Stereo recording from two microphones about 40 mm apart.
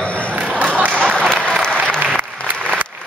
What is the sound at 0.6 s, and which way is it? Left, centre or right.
Applause, right.